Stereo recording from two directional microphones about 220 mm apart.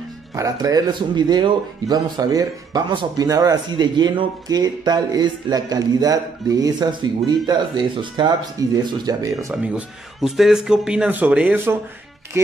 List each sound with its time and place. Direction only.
0.3 s speech: 15° right (ahead or behind)